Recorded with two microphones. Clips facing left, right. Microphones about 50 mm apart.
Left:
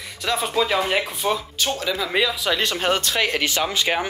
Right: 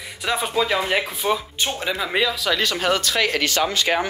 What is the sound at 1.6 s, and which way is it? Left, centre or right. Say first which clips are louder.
Speech: even; right.